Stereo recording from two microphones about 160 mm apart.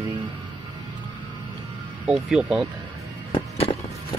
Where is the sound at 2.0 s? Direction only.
5° right (ahead or behind).